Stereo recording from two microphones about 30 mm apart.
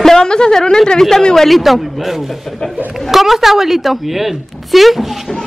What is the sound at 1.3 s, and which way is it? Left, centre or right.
Music, centre.